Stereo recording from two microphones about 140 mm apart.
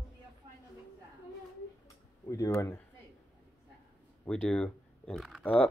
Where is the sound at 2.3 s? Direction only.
20° left (ahead or behind).